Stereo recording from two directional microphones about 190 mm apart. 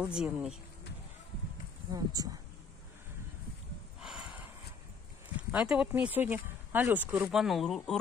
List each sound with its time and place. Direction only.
0.0 s speech: 5° right (ahead or behind)
1.9 s speech: 20° right (ahead or behind)
4.0 s a sound: 5° right (ahead or behind)
5.5 s speech: 5° right (ahead or behind)